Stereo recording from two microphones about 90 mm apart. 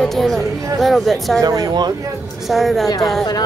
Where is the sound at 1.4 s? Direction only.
45° right (ahead or behind).